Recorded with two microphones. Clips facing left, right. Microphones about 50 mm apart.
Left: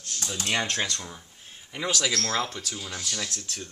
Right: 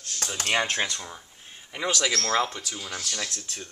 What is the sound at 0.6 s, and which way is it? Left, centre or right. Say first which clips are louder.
Speech: right 3 dB; centre.